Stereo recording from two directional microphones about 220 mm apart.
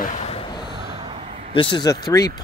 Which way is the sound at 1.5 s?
20° left (ahead or behind).